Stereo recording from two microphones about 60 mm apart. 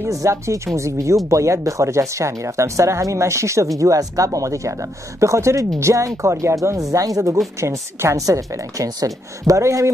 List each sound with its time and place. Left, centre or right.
0.1 s speech: right
7.6 s speech: right
8.3 s a woman's voice: right
9.6 s speech: right